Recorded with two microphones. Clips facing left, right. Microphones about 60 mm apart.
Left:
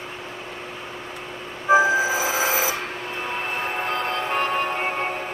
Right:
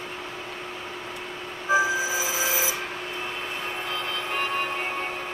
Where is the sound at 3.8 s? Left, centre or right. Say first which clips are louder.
Left 6 dB; left.